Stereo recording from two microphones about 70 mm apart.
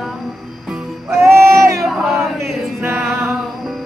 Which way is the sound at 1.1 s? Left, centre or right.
Right.